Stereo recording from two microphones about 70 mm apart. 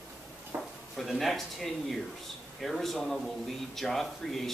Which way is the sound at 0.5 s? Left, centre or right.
Right.